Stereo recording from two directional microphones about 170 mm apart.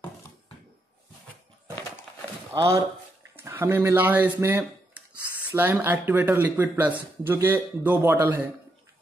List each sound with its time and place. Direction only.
2.5 s speech: 20° right (ahead or behind)